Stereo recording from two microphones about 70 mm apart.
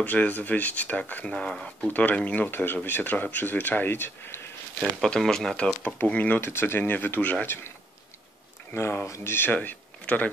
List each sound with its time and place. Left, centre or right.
0.0 s speech: left
1.9 s speech: left
5.0 s speech: centre
6.0 s speech: left
7.4 s speech: left
8.7 s speech: left
9.3 s speech: left